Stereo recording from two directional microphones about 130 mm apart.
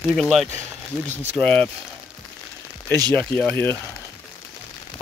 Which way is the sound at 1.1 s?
60° right (ahead or behind).